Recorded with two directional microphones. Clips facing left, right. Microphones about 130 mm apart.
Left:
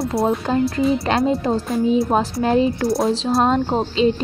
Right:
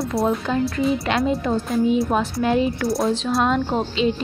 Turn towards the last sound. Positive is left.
turn(degrees=35)  # may be behind; listen again after turning